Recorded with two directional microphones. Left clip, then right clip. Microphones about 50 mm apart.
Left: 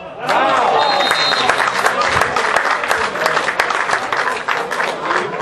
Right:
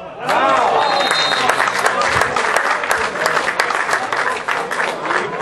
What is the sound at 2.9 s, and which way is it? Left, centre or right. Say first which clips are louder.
Applause: left 1 dB; left.